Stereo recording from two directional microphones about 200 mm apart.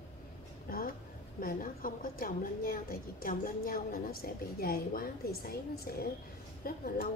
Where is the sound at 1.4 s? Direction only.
45° left (ahead or behind).